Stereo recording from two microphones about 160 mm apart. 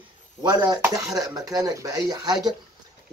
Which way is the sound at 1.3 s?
20° right (ahead or behind).